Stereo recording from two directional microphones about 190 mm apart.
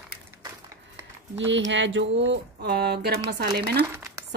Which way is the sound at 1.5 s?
75° right (ahead or behind).